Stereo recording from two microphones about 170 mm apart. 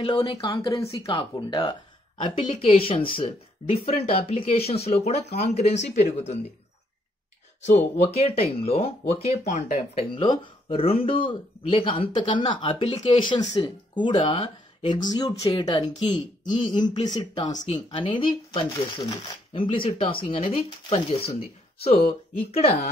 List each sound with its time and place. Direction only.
0.0 s speech: 30° left (ahead or behind)
7.6 s speech: 40° left (ahead or behind)